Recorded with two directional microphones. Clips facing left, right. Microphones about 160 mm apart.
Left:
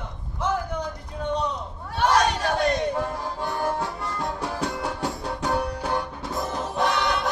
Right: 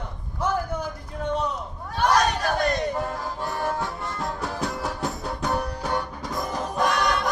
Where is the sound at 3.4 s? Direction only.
30° left (ahead or behind).